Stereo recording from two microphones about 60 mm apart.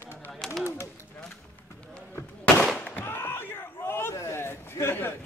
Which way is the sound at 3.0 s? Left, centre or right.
Left.